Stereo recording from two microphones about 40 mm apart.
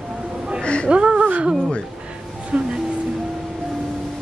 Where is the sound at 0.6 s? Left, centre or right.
Left.